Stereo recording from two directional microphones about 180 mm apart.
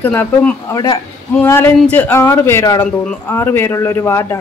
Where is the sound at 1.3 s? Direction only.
10° left (ahead or behind).